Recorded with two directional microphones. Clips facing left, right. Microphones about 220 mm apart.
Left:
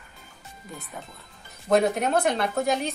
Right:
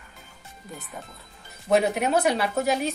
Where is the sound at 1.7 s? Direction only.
5° right (ahead or behind).